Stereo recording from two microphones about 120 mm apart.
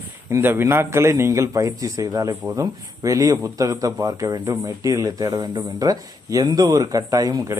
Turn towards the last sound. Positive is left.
turn(degrees=-30)  # may be behind; listen again after turning